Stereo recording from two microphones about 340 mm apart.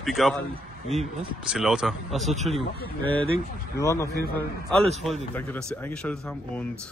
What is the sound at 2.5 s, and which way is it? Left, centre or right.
Speech, centre.